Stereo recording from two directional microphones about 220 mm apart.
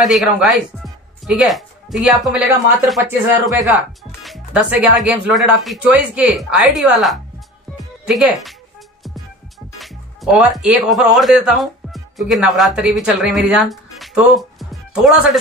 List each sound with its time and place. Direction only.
0.0 s speech: centre (ahead or behind)
3.0 s speech: 15° right (ahead or behind)
3.6 s speech: centre (ahead or behind)
9.8 s speech: centre (ahead or behind)